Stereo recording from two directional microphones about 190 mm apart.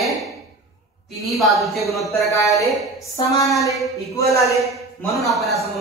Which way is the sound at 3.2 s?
20° left (ahead or behind).